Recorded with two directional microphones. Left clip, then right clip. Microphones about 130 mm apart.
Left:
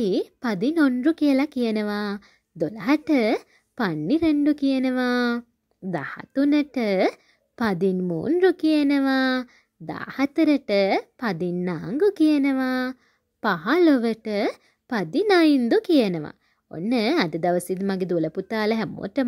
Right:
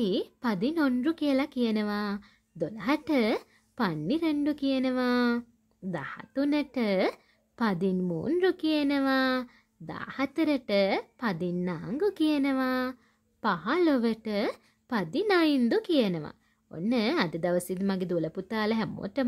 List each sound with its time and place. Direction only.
0.0 s speech: 35° left (ahead or behind)